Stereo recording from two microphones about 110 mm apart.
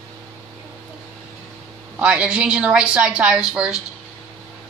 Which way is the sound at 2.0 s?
10° right (ahead or behind).